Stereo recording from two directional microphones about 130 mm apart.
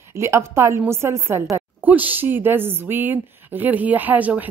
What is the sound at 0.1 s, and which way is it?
Speech, 20° right (ahead or behind).